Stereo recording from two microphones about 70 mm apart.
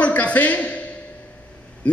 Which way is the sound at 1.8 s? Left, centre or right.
Centre.